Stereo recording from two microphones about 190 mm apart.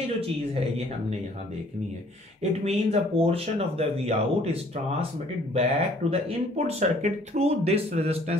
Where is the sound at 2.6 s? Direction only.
30° right (ahead or behind).